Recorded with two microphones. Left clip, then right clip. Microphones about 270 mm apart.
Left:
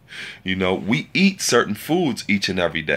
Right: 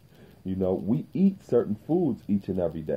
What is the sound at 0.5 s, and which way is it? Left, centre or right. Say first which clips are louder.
Speech: left 6 dB; left.